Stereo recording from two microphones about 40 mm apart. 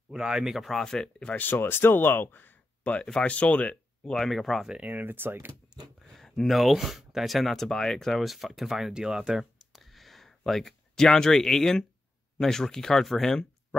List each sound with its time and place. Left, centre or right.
0.1 s speech: centre
0.6 s speech: centre
1.4 s speech: left
3.1 s speech: left
3.3 s speech: left
4.0 s speech: centre
4.9 s speech: right
5.9 s speech: centre
7.5 s speech: centre
8.2 s speech: centre
8.9 s speech: centre
9.7 s a sound: centre
11.1 s speech: centre
13.3 s a sound: centre